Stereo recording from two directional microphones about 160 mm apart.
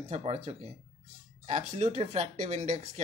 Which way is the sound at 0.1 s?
40° right (ahead or behind).